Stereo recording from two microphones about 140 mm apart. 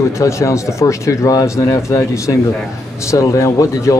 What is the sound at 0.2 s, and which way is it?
Speech, 20° left (ahead or behind).